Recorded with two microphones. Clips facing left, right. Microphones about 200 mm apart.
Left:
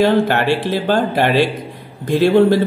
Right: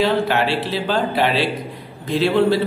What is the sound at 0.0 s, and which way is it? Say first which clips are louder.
A man's voice: left 4 dB; 50° left (ahead or behind).